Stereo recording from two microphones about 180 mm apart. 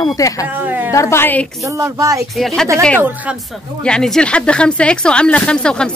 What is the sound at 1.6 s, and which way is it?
Speech, 15° right (ahead or behind).